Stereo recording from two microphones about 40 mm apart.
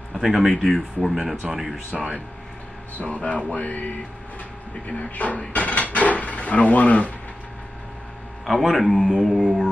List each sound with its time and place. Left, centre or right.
0.2 s speech: centre
3.0 s speech: left
4.8 s speech: left
5.5 s dishes: left
8.5 s speech: centre